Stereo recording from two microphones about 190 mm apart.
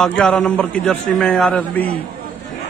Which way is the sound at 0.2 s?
5° left (ahead or behind).